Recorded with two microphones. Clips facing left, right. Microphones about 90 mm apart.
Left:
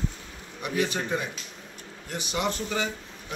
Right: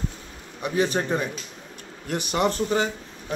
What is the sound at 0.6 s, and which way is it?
Speech, 30° right (ahead or behind).